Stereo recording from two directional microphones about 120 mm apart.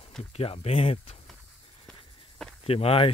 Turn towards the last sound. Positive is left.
turn(degrees=50)  # may be behind; listen again after turning